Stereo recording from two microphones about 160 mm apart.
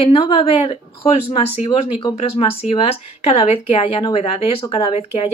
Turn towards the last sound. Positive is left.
turn(degrees=40)  # may be behind; listen again after turning